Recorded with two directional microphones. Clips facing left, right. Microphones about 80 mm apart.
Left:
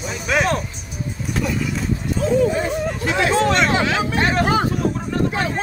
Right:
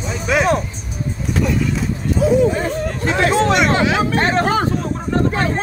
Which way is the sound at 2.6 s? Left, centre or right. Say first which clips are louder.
Right 1 dB; right.